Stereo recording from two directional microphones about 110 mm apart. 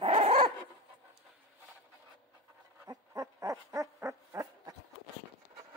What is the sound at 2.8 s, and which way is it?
Owl, 35° right (ahead or behind).